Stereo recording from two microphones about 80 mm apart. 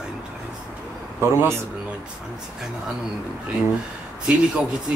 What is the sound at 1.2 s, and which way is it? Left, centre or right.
Speech, right.